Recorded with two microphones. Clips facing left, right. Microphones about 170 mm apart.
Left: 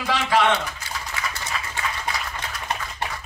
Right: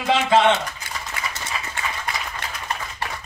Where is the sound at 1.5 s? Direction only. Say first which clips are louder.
Even; 10° right (ahead or behind).